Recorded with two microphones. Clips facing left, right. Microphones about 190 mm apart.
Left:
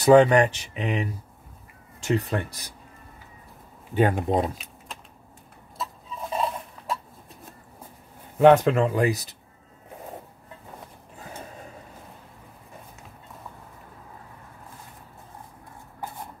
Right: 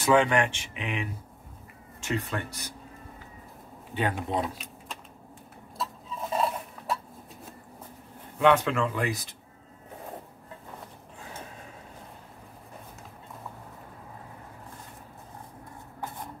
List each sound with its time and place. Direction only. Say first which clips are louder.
0.0 s speech: left 7 dB; 40° left (ahead or behind)
2.0 s speech: left 6 dB; 35° left (ahead or behind)
3.9 s speech: left 7 dB; 45° left (ahead or behind)
6.3 s a sound: even; centre (ahead or behind)
8.4 s speech: left 6 dB; 40° left (ahead or behind)